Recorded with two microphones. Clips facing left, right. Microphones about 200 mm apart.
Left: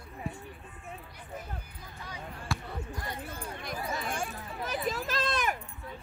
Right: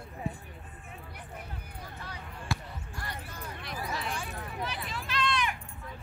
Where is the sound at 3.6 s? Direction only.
45° left (ahead or behind).